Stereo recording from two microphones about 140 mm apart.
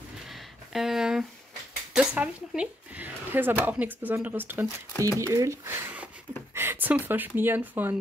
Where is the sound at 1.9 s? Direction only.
10° right (ahead or behind).